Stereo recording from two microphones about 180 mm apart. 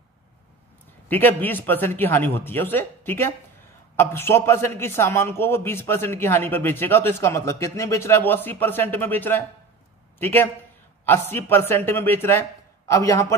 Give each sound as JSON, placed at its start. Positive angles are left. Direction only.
{"t": 1.0, "sound": "a man's voice", "side_deg": 10}